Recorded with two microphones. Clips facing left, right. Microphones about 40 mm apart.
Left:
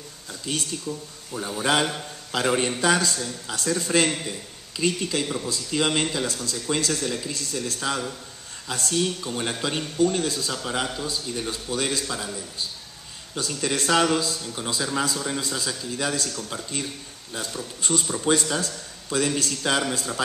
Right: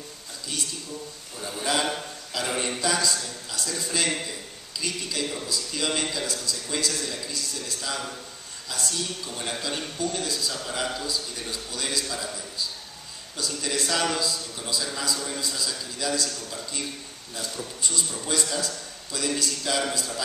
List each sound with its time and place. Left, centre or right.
0.5 s speech: left
13.4 s speech: left
17.8 s speech: left